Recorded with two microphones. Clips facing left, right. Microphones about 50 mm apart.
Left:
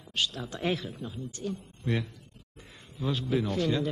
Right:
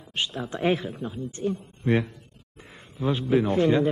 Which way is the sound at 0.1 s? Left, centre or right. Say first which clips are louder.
Right 3 dB; right.